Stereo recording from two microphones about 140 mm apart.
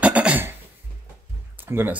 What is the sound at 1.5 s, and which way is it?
Speech, 15° right (ahead or behind).